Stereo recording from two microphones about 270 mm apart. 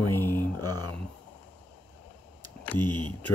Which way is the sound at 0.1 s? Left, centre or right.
Centre.